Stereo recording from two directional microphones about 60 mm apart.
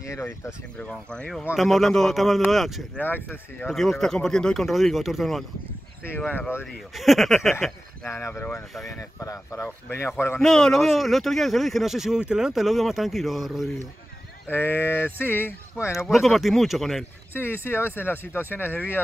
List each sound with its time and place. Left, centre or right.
0.0 s speech: left
0.7 s speech: centre
1.6 s speech: centre
3.0 s speech: left
3.7 s speech: centre
4.6 s speech: centre
7.0 s speech: centre
8.1 s a man's voice: left
9.2 s speech: left
9.9 s a man's voice: left
10.4 s speech: centre
14.5 s speech: left
16.1 s speech: centre
17.3 s speech: left